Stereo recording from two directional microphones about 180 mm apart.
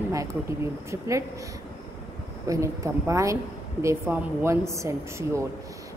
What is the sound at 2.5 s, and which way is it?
A woman's voice, 15° right (ahead or behind).